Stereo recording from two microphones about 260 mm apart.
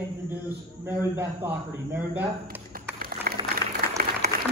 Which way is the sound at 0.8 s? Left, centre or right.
Centre.